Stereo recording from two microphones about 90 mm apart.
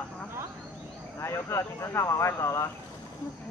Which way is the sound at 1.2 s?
30° left (ahead or behind).